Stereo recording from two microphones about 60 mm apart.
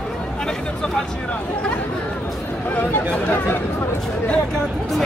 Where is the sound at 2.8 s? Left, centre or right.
Left.